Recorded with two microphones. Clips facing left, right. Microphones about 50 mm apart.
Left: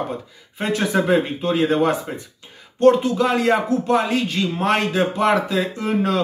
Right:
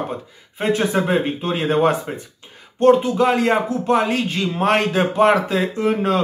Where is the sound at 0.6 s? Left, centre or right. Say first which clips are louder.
Right 1 dB; centre.